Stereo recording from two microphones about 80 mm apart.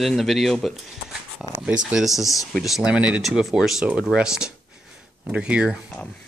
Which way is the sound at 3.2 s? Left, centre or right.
Centre.